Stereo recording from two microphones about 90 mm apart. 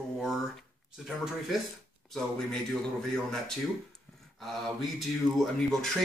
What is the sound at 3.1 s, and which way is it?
Speech, 5° left (ahead or behind).